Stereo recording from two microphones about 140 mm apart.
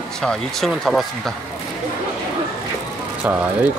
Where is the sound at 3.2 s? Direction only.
10° right (ahead or behind).